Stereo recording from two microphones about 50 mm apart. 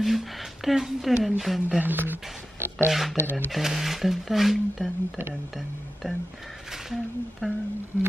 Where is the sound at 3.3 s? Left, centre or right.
Left.